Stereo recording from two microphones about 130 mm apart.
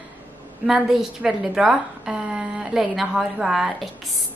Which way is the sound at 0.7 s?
5° right (ahead or behind).